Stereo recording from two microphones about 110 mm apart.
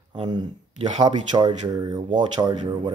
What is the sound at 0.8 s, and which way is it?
Speech, 90° right.